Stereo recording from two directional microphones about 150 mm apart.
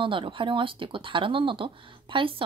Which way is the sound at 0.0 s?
35° right (ahead or behind).